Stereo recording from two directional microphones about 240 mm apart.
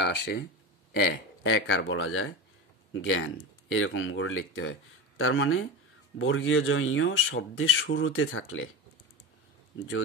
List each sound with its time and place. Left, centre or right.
0.0 s speech: left